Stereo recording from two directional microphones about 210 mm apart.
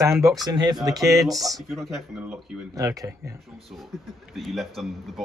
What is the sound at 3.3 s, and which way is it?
A man's voice, centre (ahead or behind).